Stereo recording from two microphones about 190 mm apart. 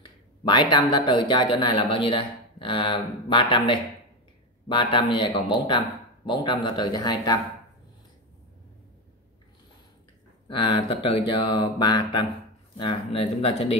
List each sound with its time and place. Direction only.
0.0 s speech: 25° left (ahead or behind)
10.5 s speech: 25° left (ahead or behind)